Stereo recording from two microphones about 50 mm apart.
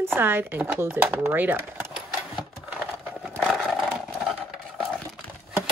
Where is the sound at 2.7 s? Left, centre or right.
Right.